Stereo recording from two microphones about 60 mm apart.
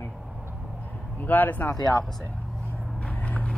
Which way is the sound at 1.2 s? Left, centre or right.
Left.